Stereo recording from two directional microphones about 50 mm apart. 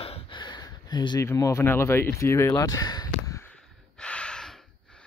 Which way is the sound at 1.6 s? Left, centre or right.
Left.